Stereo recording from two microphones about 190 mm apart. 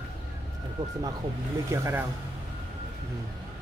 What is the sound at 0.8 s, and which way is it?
Speech, 20° right (ahead or behind).